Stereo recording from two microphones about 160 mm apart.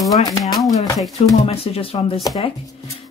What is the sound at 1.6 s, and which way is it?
Speech, 35° left (ahead or behind).